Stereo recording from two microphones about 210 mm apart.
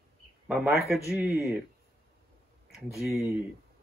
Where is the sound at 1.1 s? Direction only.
5° right (ahead or behind).